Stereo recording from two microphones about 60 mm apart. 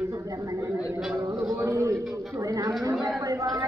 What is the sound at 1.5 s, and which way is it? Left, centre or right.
A woman's voice, right.